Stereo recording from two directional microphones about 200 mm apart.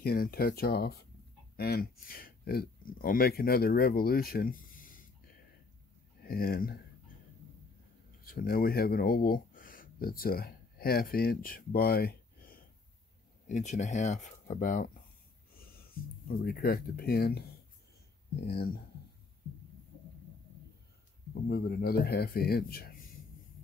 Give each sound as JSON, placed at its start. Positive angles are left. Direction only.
{"t": 0.0, "sound": "speech", "side_deg": 45}
{"t": 6.2, "sound": "speech", "side_deg": 50}
{"t": 8.2, "sound": "speech", "side_deg": 45}
{"t": 13.5, "sound": "speech", "side_deg": 35}
{"t": 18.5, "sound": "speech", "side_deg": 45}
{"t": 21.5, "sound": "speech", "side_deg": 55}